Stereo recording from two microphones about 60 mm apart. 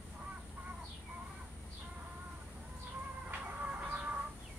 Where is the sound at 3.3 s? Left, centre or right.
Right.